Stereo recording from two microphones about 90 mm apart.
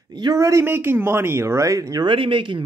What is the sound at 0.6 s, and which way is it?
Speech, 25° right (ahead or behind).